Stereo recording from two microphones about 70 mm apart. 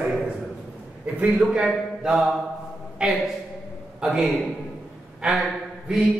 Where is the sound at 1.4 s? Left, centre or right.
Centre.